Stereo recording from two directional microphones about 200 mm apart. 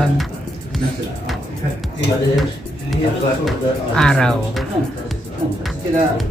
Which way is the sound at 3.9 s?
5° left (ahead or behind).